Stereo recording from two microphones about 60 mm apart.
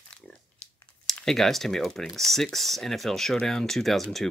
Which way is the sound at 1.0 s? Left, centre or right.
Centre.